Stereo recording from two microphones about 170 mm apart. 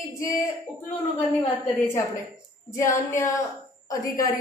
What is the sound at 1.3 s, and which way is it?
A woman's voice, 10° left (ahead or behind).